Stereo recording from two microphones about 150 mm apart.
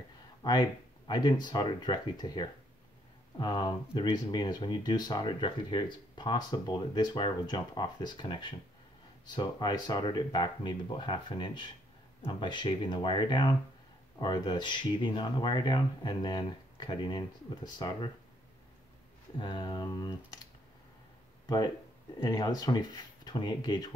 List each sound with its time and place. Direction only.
0.4 s speech: 30° left (ahead or behind)
19.3 s speech: 30° left (ahead or behind)
21.5 s speech: 25° left (ahead or behind)